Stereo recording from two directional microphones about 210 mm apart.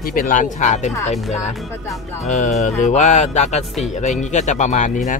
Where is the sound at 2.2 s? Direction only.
35° left (ahead or behind).